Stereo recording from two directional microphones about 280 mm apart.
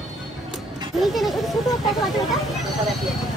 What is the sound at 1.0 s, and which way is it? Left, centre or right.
Speech, centre.